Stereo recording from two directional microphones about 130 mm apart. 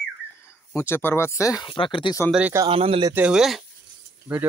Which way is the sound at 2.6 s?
45° right (ahead or behind).